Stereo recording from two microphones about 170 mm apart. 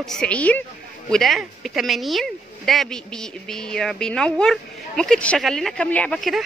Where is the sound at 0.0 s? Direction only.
5° left (ahead or behind).